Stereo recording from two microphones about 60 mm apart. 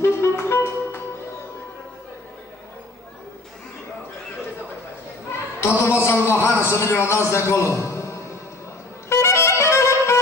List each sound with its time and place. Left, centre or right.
0.0 s music: left
5.6 s a man's voice: left
9.1 s music: left